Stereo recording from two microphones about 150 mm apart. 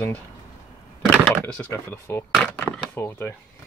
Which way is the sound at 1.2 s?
5° left (ahead or behind).